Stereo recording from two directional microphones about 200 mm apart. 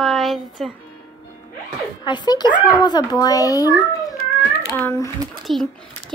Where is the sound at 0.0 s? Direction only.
Centre (ahead or behind).